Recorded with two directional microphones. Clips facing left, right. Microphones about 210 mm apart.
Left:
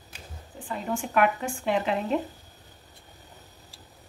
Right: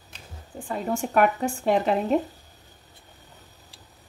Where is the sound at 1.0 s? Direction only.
40° right (ahead or behind).